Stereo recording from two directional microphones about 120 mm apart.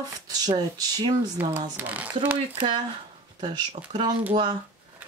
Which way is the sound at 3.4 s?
40° right (ahead or behind).